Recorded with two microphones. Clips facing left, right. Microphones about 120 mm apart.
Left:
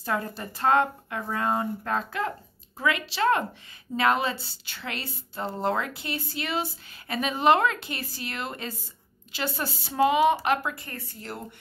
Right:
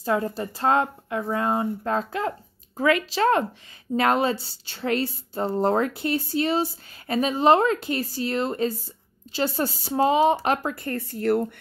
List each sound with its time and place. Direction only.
0.0 s a woman's voice: 30° right (ahead or behind); by 11.4 s 60° right (ahead or behind)